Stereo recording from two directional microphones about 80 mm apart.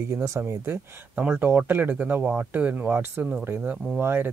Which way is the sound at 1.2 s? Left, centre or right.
Right.